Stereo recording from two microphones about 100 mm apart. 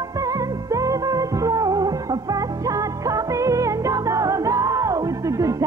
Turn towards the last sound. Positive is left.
turn(degrees=-35)  # may be behind; listen again after turning